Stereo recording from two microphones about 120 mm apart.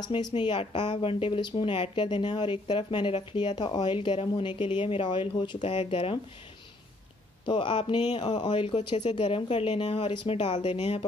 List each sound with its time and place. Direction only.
0.0 s a woman's voice: 35° left (ahead or behind)
7.4 s a woman's voice: 40° left (ahead or behind)
10.4 s speech: 65° left (ahead or behind)